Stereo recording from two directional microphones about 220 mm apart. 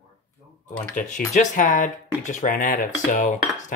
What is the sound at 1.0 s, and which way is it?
Speech, 35° left (ahead or behind).